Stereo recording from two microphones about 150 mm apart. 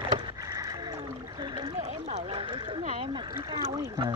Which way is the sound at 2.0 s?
45° right (ahead or behind).